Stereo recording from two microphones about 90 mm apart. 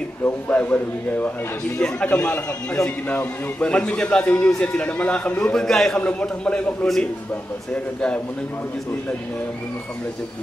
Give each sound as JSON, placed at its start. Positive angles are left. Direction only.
{"t": 0.2, "sound": "a man's voice", "side_deg": 15}